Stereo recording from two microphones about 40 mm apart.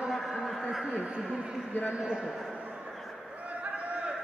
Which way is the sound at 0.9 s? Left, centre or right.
Right.